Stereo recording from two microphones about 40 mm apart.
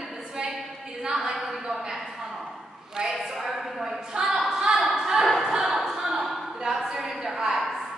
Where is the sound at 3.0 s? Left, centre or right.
Centre.